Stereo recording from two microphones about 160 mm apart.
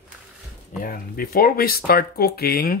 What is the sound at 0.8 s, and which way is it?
Speech, 65° left (ahead or behind).